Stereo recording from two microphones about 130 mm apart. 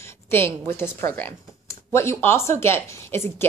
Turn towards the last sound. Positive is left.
turn(degrees=20)  # may be behind; listen again after turning